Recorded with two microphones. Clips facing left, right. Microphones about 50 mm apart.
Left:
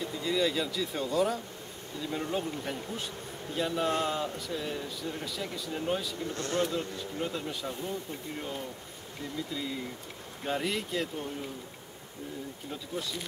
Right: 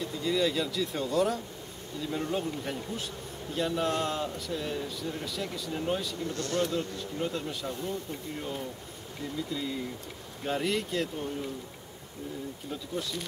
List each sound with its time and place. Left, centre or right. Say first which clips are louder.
0.0 s speech: right 1 dB; centre
6.3 s speech: even; left
6.6 s speech: right 1 dB; centre
10.4 s speech: right 2 dB; centre
12.9 s speech: right 1 dB; centre